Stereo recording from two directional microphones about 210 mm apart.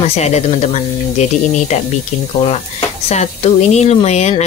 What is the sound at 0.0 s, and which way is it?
Speech, 30° left (ahead or behind).